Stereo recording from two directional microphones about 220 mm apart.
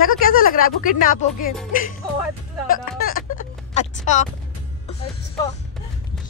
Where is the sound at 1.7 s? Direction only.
40° left (ahead or behind).